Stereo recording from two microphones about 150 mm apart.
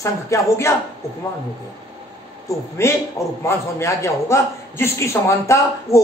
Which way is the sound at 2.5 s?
20° left (ahead or behind).